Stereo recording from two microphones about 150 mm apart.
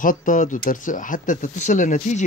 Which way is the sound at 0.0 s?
65° left (ahead or behind).